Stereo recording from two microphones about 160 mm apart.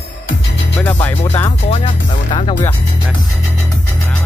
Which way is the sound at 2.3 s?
35° left (ahead or behind).